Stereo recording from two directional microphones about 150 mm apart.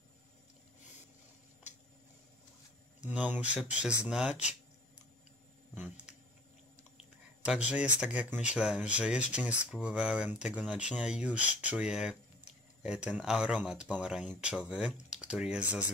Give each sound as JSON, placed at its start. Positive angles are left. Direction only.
{"t": 3.0, "sound": "speech", "side_deg": -10}
{"t": 7.7, "sound": "speech", "side_deg": -10}